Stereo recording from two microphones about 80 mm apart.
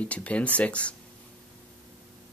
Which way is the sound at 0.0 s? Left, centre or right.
Centre.